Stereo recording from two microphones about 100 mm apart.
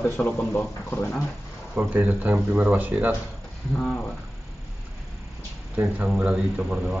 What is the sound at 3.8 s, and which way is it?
Speech, 5° left (ahead or behind).